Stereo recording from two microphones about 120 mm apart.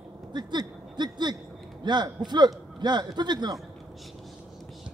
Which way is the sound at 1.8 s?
40° right (ahead or behind).